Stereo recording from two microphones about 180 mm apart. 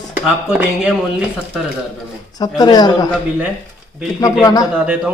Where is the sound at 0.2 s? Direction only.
5° right (ahead or behind).